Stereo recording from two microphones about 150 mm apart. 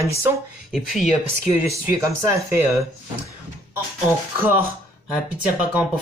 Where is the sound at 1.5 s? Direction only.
20° right (ahead or behind).